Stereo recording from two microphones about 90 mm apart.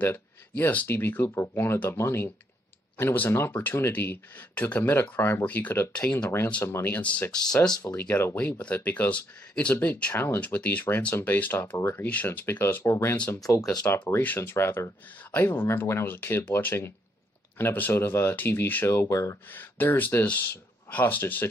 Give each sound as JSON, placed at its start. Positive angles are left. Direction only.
{"t": 0.0, "sound": "speech", "side_deg": 20}
{"t": 7.9, "sound": "speech", "side_deg": 20}
{"t": 10.1, "sound": "speech", "side_deg": 30}
{"t": 10.4, "sound": "speech", "side_deg": 15}
{"t": 13.4, "sound": "speech", "side_deg": 40}
{"t": 13.9, "sound": "speech", "side_deg": 25}
{"t": 19.5, "sound": "speech", "side_deg": 20}